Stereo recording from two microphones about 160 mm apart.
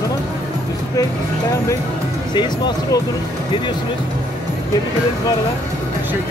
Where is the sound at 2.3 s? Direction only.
25° left (ahead or behind).